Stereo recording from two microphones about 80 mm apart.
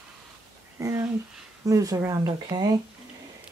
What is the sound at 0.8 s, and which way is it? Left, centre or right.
Speech, right.